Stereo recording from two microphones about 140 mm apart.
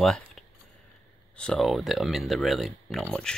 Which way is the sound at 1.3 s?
5° left (ahead or behind).